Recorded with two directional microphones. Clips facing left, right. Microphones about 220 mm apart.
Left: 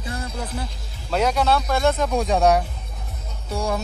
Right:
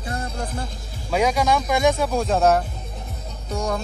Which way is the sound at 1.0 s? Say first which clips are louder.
Even; 10° right (ahead or behind).